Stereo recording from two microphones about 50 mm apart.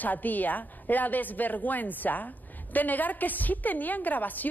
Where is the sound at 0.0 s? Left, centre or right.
Left.